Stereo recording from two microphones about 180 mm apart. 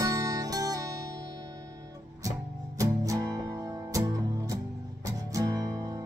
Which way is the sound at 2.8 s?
20° right (ahead or behind).